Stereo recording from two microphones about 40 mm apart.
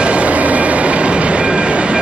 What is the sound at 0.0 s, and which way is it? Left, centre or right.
Train, right.